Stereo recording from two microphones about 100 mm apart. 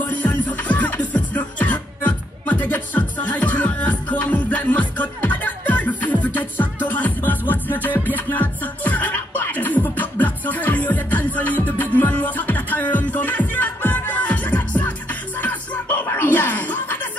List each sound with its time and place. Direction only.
0.1 s music: 15° left (ahead or behind)